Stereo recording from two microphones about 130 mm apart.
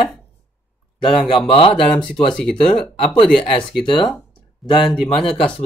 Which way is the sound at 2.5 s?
40° left (ahead or behind).